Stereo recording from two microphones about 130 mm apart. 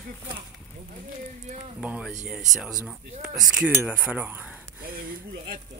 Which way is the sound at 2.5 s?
5° right (ahead or behind).